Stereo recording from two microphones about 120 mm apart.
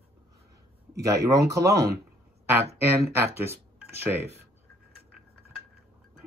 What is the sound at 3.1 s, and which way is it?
Speech, 20° right (ahead or behind).